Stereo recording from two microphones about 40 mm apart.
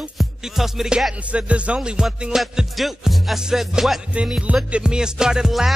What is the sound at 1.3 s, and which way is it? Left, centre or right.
Music, right.